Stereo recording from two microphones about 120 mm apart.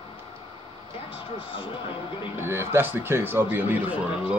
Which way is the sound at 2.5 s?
20° right (ahead or behind).